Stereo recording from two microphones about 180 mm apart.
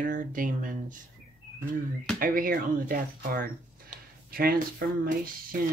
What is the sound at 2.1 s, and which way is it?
Speech, 50° right (ahead or behind).